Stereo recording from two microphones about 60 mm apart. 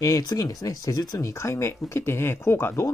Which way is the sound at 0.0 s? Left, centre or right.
Left.